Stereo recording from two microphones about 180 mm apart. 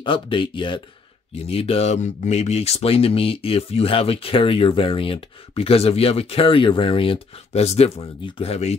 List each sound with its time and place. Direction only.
0.0 s speech: 30° left (ahead or behind)